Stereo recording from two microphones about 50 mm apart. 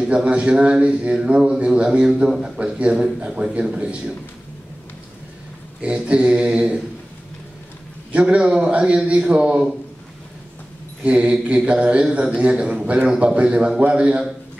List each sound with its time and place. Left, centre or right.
0.0 s a man's voice: right
2.6 s a man's voice: right
5.8 s a man's voice: right
8.1 s a man's voice: right
11.1 s a man's voice: right